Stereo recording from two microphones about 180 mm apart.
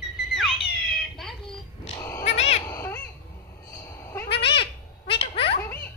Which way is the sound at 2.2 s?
35° left (ahead or behind).